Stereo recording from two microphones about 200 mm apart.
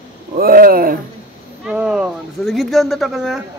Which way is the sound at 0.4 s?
45° right (ahead or behind).